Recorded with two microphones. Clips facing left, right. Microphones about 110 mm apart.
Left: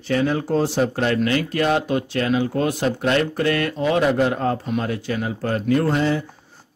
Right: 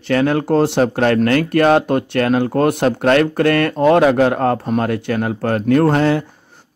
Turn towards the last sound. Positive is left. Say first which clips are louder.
# right 6 dB
turn(degrees=-70)  # may be behind; listen again after turning